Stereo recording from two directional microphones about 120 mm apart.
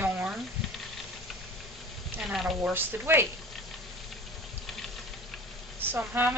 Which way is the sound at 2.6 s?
20° right (ahead or behind).